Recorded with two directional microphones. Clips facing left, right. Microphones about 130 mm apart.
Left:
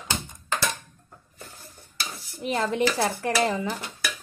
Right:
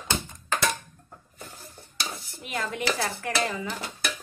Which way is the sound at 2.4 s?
30° left (ahead or behind).